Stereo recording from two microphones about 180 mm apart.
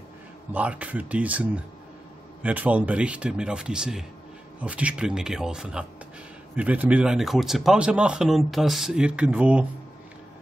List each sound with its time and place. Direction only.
0.5 s speech: 10° right (ahead or behind)